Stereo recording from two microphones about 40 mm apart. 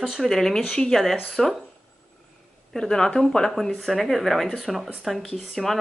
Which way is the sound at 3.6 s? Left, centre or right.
Centre.